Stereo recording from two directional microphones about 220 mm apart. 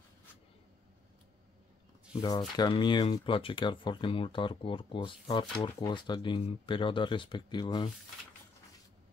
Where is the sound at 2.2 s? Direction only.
20° left (ahead or behind).